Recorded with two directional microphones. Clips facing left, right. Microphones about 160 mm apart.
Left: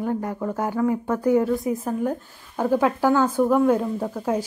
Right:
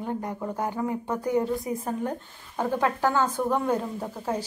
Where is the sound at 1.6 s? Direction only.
Centre (ahead or behind).